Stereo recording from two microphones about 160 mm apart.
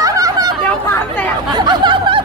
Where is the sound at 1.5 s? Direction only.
30° right (ahead or behind).